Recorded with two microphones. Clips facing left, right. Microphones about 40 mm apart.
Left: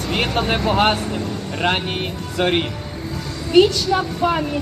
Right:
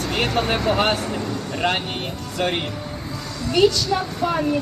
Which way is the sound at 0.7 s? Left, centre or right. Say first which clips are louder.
Left 3 dB; left.